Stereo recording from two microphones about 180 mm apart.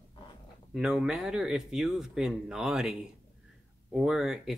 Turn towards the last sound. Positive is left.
turn(degrees=0)  # may be behind; listen again after turning